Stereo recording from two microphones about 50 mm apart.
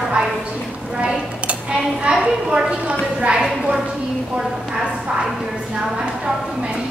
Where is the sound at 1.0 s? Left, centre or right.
Centre.